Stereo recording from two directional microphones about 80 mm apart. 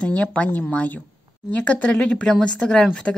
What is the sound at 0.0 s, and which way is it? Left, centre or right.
Speech, centre.